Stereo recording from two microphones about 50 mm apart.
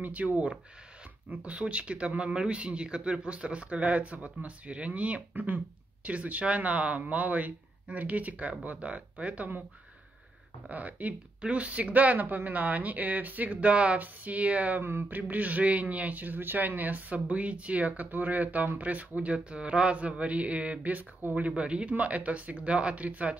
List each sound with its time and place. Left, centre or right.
0.0 s speech: right
1.3 s speech: right
5.3 s a man's voice: right
10.7 s a man's voice: right
14.8 s speech: right
15.0 s a man's voice: right